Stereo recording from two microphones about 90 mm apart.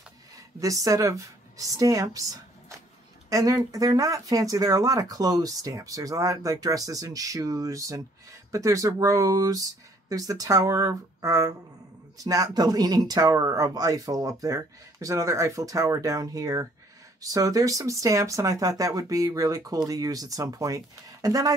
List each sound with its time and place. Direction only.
0.6 s speech: 40° right (ahead or behind)